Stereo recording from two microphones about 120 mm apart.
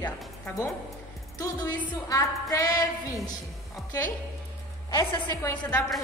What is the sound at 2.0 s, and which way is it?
Speech, 30° left (ahead or behind).